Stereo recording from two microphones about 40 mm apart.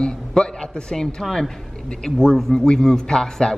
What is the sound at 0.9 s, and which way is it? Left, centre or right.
Speech, centre.